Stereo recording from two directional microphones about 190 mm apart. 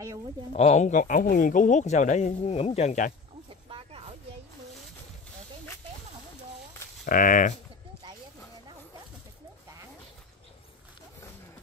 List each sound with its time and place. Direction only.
0.5 s speech: 35° left (ahead or behind)
3.7 s a sound: 30° right (ahead or behind)
7.1 s speech: 45° left (ahead or behind)